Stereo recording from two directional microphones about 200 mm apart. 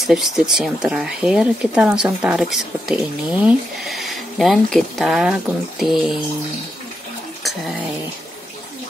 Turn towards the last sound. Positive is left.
turn(degrees=0)  # may be behind; listen again after turning